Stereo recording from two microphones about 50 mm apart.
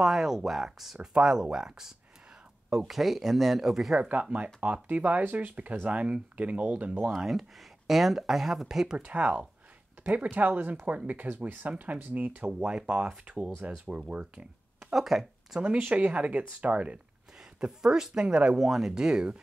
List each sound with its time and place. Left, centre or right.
0.0 s speech: centre
2.8 s speech: centre
4.0 s speech: right
7.2 s speech: centre
8.9 s speech: right
12.4 s speech: centre
15.0 s speech: centre
15.8 s speech: right
17.6 s speech: centre
18.6 s speech: centre